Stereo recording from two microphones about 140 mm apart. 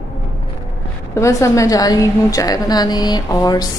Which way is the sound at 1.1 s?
20° left (ahead or behind).